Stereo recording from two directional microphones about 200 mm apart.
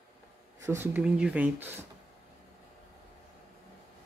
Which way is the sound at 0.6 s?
15° right (ahead or behind).